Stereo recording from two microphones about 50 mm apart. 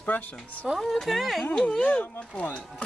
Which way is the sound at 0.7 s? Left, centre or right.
Centre.